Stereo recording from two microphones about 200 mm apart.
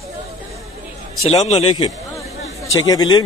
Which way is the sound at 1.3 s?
30° left (ahead or behind).